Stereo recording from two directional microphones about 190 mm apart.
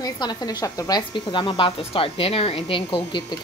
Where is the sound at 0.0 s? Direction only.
20° left (ahead or behind).